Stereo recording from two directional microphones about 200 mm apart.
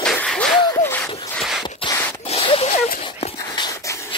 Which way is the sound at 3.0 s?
30° left (ahead or behind).